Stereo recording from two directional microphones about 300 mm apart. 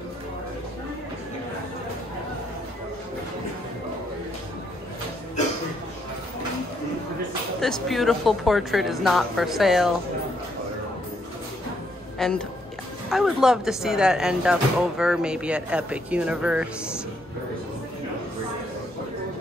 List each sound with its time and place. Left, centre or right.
7.6 s speech: centre
12.2 s speech: centre